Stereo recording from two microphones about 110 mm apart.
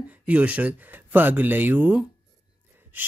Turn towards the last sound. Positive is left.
turn(degrees=-15)  # may be behind; listen again after turning